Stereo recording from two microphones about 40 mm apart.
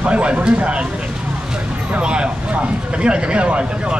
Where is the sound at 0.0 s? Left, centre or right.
Right.